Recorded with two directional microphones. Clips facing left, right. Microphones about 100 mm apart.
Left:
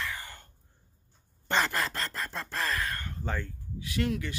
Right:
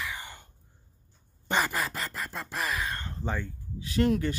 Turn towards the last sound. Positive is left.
turn(degrees=-40)  # may be behind; listen again after turning